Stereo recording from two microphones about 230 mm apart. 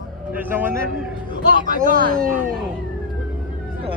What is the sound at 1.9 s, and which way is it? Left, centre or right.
Speech, right.